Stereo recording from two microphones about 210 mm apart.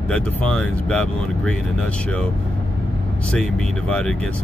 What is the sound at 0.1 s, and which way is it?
Speech, 5° left (ahead or behind).